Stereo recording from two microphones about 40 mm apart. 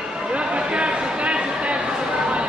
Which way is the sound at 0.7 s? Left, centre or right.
Right.